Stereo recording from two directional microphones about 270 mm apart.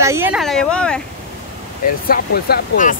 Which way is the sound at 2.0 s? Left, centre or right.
Left.